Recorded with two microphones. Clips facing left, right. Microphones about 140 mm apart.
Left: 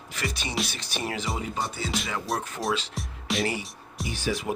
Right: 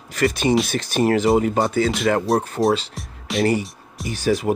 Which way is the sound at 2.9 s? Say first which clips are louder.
Right 4 dB; centre (ahead or behind).